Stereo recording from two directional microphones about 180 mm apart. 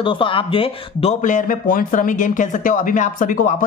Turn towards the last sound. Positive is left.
turn(degrees=45)  # may be behind; listen again after turning